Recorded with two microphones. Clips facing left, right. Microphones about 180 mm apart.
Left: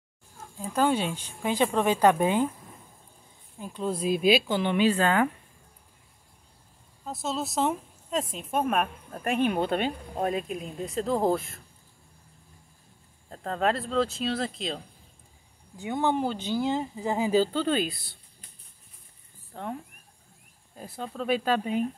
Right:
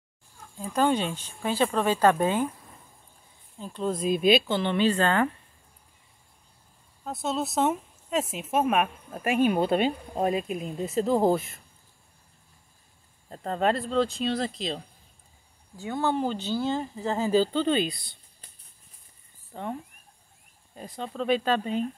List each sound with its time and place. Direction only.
0.7 s speech: 10° left (ahead or behind)
3.5 s speech: 10° left (ahead or behind)
7.1 s a woman's voice: centre (ahead or behind)
13.3 s a woman's voice: 5° right (ahead or behind)
15.8 s speech: 15° left (ahead or behind)
19.5 s speech: centre (ahead or behind)
20.7 s speech: 5° left (ahead or behind)